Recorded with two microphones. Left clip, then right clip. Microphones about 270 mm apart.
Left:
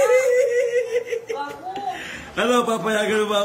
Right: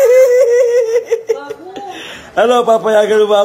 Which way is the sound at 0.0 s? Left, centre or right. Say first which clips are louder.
Right 9 dB; centre.